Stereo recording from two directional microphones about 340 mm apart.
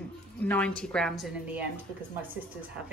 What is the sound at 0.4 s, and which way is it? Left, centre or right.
Speech, centre.